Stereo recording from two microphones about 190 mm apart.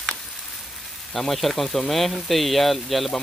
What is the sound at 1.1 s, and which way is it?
Speech, centre (ahead or behind).